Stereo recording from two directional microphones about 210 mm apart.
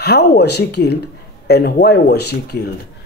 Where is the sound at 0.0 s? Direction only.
50° left (ahead or behind).